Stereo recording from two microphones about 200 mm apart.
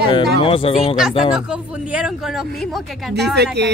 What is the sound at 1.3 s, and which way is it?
Speech, 5° right (ahead or behind).